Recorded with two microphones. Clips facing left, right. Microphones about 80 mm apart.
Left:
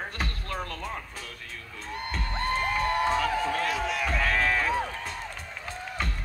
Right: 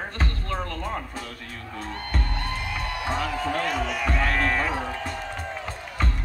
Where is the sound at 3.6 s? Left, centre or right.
Centre.